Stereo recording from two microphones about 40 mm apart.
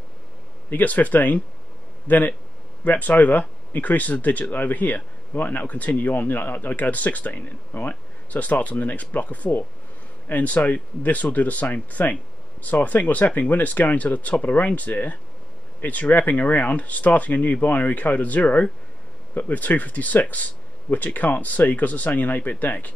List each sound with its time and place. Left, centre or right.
0.7 s speech: left
5.6 s speech: left